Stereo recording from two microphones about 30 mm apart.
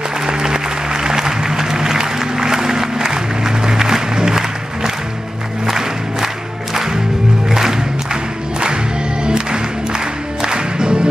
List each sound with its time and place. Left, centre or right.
0.3 s applause: right
5.7 s music: centre
9.2 s music: right